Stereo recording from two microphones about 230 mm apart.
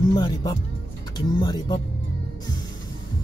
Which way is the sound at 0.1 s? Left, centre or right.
Centre.